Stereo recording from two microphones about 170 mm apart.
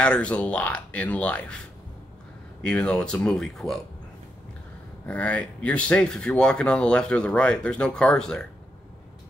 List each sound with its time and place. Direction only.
0.0 s speech: 5° left (ahead or behind)
2.6 s speech: 5° left (ahead or behind)
5.0 s speech: 10° left (ahead or behind)